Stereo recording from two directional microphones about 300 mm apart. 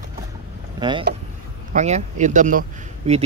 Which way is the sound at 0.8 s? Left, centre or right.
Centre.